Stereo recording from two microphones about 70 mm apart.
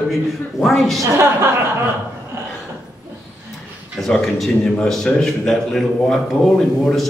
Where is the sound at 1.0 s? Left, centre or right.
Right.